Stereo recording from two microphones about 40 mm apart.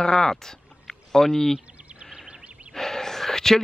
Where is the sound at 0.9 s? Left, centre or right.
Centre.